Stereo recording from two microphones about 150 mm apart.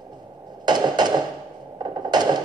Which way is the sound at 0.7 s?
30° right (ahead or behind).